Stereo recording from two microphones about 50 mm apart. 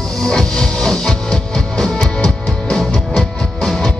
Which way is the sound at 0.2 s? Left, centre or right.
Centre.